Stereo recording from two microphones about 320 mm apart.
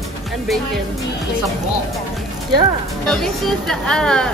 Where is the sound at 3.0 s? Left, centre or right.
Centre.